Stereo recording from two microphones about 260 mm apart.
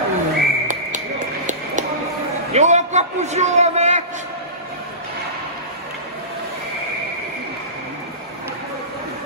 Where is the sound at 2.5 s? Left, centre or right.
Right.